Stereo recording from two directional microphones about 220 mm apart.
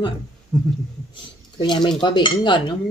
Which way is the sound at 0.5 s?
10° right (ahead or behind).